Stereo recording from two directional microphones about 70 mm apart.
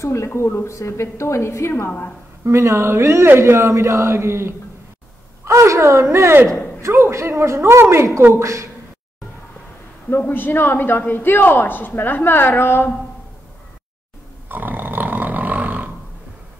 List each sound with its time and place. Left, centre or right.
0.0 s a woman's voice: left
2.4 s a man's voice: right
10.0 s a man's voice: left
14.5 s a sound: right